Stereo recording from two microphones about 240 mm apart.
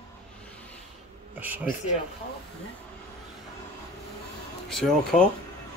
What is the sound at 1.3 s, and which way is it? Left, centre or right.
Speech, centre.